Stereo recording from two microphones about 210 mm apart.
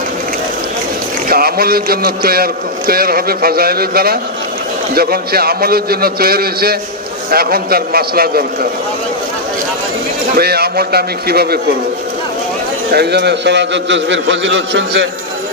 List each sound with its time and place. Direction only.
1.3 s a man's voice: 45° right (ahead or behind)
10.3 s a man's voice: 50° right (ahead or behind)
12.9 s a man's voice: 50° right (ahead or behind)